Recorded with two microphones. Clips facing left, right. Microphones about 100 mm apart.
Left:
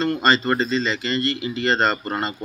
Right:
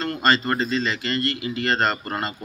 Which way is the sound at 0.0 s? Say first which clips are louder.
Left 2 dB; centre (ahead or behind).